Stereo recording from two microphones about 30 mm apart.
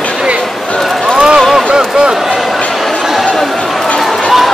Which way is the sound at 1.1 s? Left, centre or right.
Right.